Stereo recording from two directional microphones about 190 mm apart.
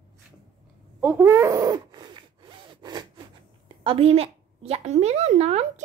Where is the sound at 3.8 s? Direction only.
30° right (ahead or behind).